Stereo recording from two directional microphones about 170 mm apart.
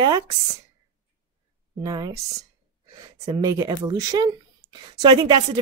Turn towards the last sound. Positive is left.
turn(degrees=-25)  # may be behind; listen again after turning